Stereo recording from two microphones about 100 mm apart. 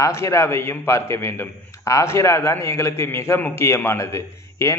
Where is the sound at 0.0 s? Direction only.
30° left (ahead or behind).